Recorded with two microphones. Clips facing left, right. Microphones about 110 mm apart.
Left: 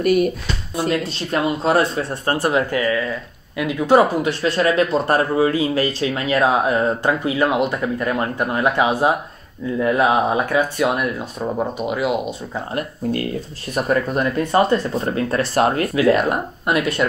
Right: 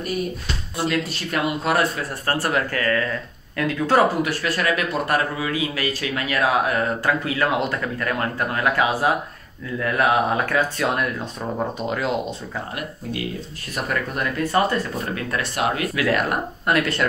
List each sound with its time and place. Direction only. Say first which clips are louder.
0.0 s speech: left 10 dB; 70° left (ahead or behind)
1.0 s speech: left 3 dB; 25° left (ahead or behind)
12.7 s speech: left 7 dB; 45° left (ahead or behind)
13.7 s speech: left 6 dB; 25° left (ahead or behind)
15.9 s speech: left 5 dB; 25° left (ahead or behind)